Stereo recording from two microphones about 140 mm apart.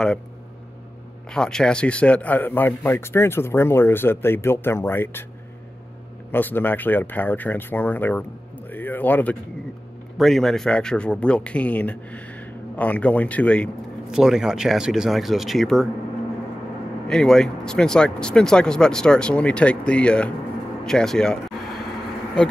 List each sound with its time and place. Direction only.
1.3 s a man's voice: 5° left (ahead or behind)
6.3 s speech: 15° left (ahead or behind)
10.1 s a man's voice: centre (ahead or behind)
14.1 s speech: 5° right (ahead or behind)
17.1 s speech: 5° left (ahead or behind)